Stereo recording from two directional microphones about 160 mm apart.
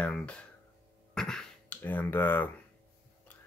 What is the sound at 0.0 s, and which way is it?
Speech, 10° left (ahead or behind).